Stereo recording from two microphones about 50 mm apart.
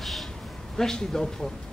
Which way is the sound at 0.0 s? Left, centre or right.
Centre.